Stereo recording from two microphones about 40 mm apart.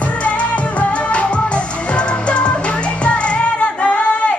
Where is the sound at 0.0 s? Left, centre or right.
Left.